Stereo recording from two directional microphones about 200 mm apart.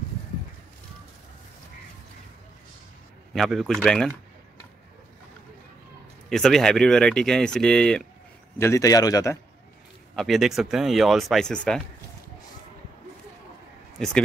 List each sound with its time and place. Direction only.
3.3 s speech: centre (ahead or behind)
6.2 s speech: centre (ahead or behind)
8.5 s a man's voice: 15° left (ahead or behind)
10.1 s speech: centre (ahead or behind)
13.9 s a man's voice: centre (ahead or behind)